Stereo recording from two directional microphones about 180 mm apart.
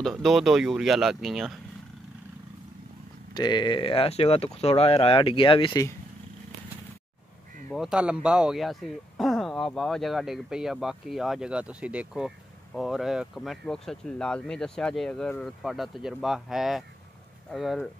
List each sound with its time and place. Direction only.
0.0 s speech: centre (ahead or behind)
3.3 s speech: 25° left (ahead or behind)
7.7 s speech: 5° right (ahead or behind)